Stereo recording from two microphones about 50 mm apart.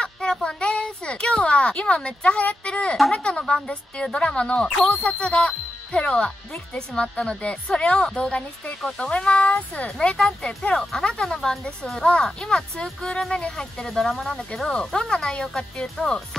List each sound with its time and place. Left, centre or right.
0.0 s speech: centre
9.8 s speech: centre
10.8 s speech: centre
15.0 s speech: centre